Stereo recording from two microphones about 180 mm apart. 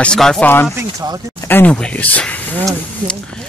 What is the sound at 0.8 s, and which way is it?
Speech, 20° right (ahead or behind).